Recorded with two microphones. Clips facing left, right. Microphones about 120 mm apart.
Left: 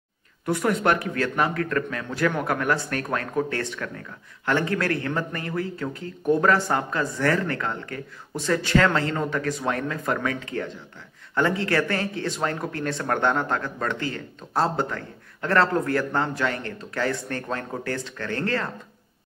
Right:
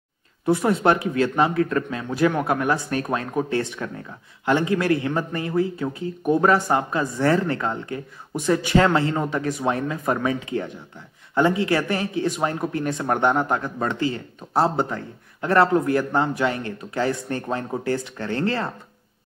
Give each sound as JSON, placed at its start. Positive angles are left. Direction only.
{"t": 0.5, "sound": "speech", "side_deg": -20}